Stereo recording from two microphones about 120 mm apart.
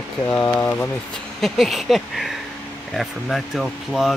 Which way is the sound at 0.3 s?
15° left (ahead or behind).